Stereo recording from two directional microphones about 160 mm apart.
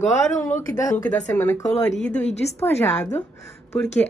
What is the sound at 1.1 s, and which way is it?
A woman's voice, 10° left (ahead or behind).